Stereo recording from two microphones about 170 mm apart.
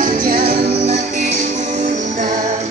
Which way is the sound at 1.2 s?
40° right (ahead or behind).